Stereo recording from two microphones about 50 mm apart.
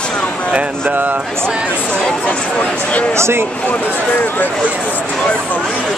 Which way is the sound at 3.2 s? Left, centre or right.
Right.